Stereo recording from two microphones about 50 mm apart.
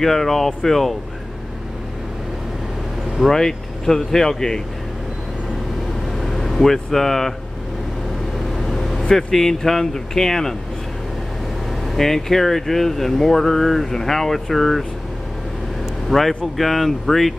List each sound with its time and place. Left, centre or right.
0.0 s speech: centre
3.3 s speech: centre
6.4 s speech: centre
8.5 s vehicle: centre
9.1 s speech: centre
11.8 s speech: centre
16.1 s speech: centre